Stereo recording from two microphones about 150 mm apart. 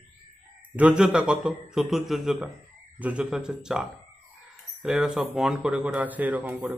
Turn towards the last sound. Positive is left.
turn(degrees=-10)  # may be behind; listen again after turning